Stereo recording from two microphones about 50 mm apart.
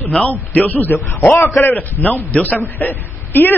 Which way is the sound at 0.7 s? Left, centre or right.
Left.